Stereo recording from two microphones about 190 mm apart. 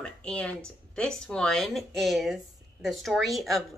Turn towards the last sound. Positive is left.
turn(degrees=0)  # may be behind; listen again after turning